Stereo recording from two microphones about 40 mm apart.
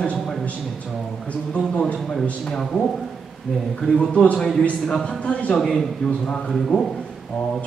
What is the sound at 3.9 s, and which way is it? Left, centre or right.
Speech, left.